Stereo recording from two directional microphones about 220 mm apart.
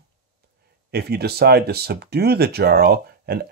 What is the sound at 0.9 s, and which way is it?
Speech, 45° right (ahead or behind).